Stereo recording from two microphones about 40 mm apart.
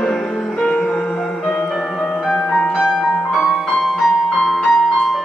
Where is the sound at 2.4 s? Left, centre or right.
Centre.